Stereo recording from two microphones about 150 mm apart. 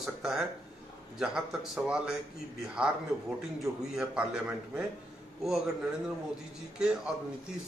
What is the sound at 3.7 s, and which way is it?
Speech, 15° right (ahead or behind).